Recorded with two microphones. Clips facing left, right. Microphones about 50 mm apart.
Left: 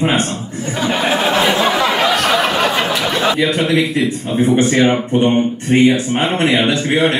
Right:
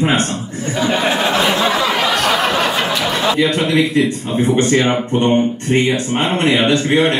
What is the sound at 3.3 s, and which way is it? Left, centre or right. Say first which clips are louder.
Speech: even; centre.